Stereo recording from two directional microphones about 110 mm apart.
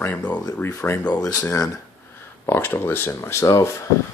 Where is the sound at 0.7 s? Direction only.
25° left (ahead or behind).